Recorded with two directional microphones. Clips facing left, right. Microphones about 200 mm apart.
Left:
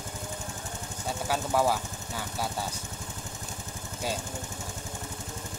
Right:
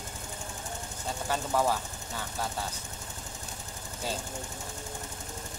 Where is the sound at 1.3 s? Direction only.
10° left (ahead or behind).